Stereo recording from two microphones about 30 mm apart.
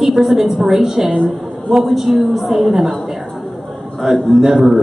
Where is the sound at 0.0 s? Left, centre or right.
Centre.